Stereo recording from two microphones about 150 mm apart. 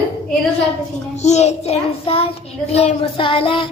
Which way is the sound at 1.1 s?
50° left (ahead or behind).